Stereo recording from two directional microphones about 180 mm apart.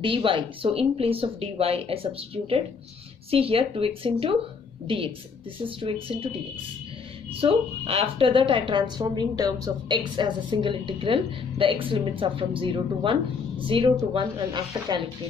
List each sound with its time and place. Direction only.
0.0 s a woman's voice: 30° right (ahead or behind)
7.3 s a woman's voice: 30° right (ahead or behind)